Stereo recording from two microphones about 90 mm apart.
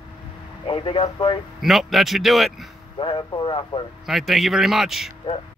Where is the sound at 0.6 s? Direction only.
90° left.